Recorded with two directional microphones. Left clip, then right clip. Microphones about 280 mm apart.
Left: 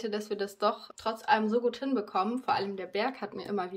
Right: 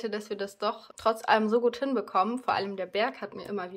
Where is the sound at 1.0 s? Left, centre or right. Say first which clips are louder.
Right 3 dB; centre.